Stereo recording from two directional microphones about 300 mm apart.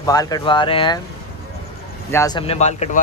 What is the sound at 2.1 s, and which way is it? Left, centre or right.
Speech, centre.